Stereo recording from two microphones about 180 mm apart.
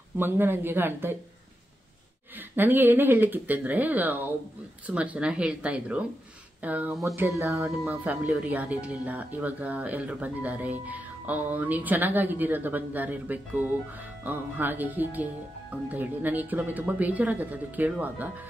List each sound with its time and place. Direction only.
0.2 s speech: 10° right (ahead or behind)
2.3 s speech: 10° right (ahead or behind)